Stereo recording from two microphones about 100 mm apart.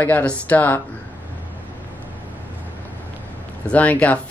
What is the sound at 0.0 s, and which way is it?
Speech, 15° left (ahead or behind).